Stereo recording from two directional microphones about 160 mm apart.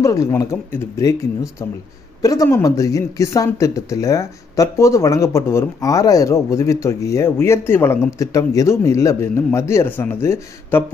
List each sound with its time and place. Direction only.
0.0 s speech: 20° left (ahead or behind)